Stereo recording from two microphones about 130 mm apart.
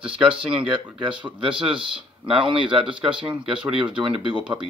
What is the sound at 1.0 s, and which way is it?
Speech, 40° right (ahead or behind).